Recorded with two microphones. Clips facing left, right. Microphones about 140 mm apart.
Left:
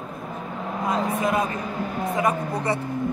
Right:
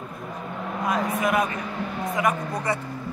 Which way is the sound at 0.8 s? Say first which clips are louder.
Left 1 dB; 25° left (ahead or behind).